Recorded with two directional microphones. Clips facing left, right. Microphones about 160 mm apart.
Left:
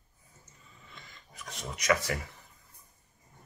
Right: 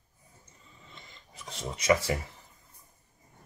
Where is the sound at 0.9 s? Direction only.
25° right (ahead or behind).